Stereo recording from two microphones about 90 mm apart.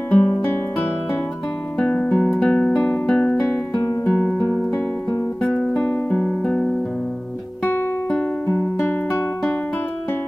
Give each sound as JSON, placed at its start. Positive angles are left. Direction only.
{"t": 0.1, "sound": "music", "side_deg": 15}
{"t": 1.8, "sound": "guitar", "side_deg": 10}
{"t": 2.3, "sound": "music", "side_deg": 5}
{"t": 3.1, "sound": "guitar", "side_deg": 10}
{"t": 6.0, "sound": "music", "side_deg": 10}